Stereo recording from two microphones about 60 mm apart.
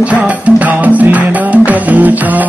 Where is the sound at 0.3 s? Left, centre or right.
Right.